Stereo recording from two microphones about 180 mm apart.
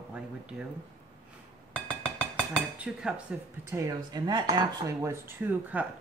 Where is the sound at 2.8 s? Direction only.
5° right (ahead or behind).